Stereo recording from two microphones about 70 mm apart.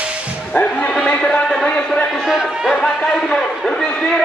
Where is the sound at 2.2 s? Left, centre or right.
Centre.